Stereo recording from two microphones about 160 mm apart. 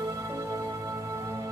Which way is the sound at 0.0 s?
20° right (ahead or behind).